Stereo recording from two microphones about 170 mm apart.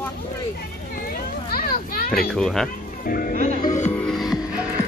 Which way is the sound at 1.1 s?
60° left (ahead or behind).